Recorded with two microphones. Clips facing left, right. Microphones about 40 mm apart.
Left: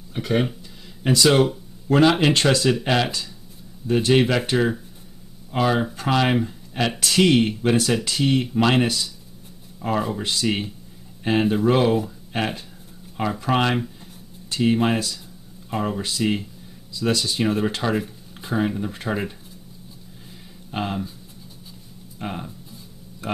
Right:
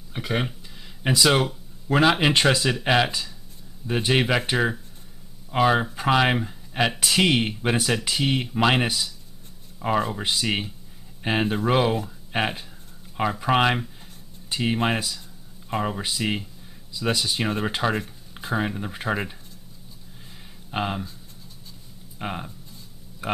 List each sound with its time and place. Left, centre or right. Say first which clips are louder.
0.1 s speech: left 4 dB; centre
20.7 s speech: even; centre
22.2 s speech: even; centre